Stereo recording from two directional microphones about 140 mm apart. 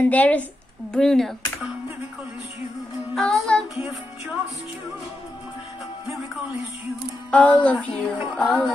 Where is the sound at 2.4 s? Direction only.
50° left (ahead or behind).